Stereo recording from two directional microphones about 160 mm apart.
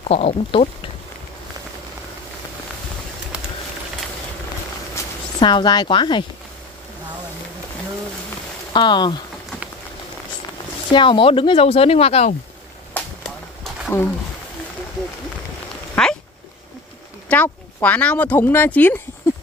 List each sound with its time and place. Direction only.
0.1 s speech: 40° left (ahead or behind)
5.4 s a woman's voice: 30° left (ahead or behind)
8.7 s a woman's voice: 30° left (ahead or behind)
10.9 s speech: 30° left (ahead or behind)
12.9 s a sound: 5° left (ahead or behind)
15.9 s a sound: 5° left (ahead or behind)
17.3 s speech: 10° left (ahead or behind)